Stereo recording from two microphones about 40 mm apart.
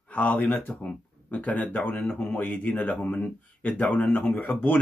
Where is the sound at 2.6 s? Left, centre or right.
Left.